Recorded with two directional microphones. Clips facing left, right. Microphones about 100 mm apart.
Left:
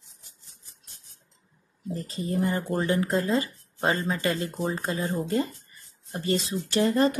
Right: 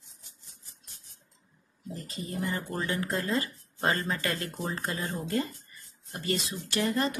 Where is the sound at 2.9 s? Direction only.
25° left (ahead or behind).